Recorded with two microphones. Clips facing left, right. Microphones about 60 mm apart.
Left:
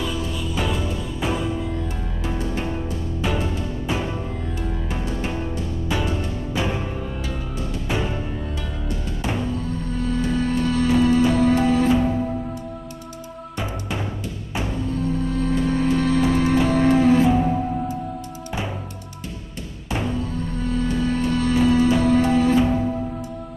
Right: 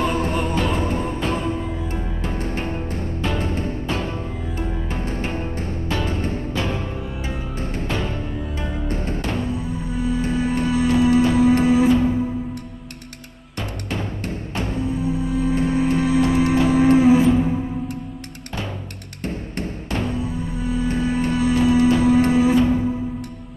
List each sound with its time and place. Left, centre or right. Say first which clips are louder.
0.0 s music: right 6 dB; right
3.2 s music: left 1 dB; centre
3.4 s music: right 2 dB; right
3.8 s music: even; centre
5.0 s music: even; right
6.5 s music: left 3 dB; centre
7.9 s music: left 2 dB; centre
8.8 s music: right 4 dB; right
9.2 s music: left 4 dB; centre
9.5 s music: even; centre
14.7 s music: right 2 dB; centre
17.3 s music: right 1 dB; centre
19.9 s music: left 1 dB; centre
20.2 s music: right 1 dB; centre